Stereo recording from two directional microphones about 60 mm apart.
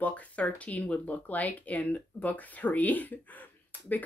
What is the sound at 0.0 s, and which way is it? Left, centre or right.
Speech, left.